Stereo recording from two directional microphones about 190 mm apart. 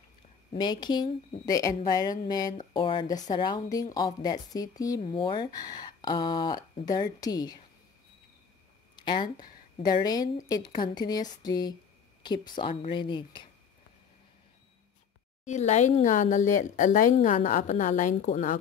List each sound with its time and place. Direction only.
0.6 s a woman's voice: 20° left (ahead or behind)
8.9 s a woman's voice: 25° left (ahead or behind)
15.4 s speech: 40° left (ahead or behind)